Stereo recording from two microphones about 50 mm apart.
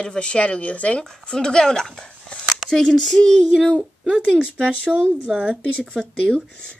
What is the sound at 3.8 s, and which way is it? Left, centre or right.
A woman's voice, centre.